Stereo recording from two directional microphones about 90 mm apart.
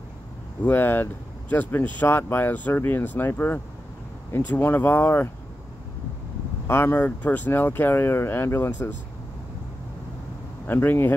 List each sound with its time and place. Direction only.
0.7 s speech: 20° left (ahead or behind)
6.7 s speech: 25° left (ahead or behind)
10.7 s speech: 25° left (ahead or behind)